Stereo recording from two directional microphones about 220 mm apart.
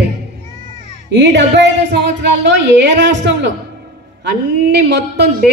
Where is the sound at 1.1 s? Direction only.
55° right (ahead or behind).